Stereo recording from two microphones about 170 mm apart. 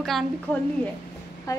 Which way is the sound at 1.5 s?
20° left (ahead or behind).